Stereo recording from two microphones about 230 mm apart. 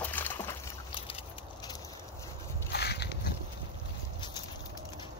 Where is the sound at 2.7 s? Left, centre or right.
Left.